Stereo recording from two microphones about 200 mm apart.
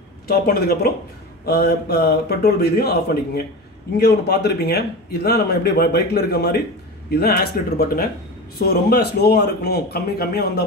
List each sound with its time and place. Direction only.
0.3 s a man's voice: 50° left (ahead or behind)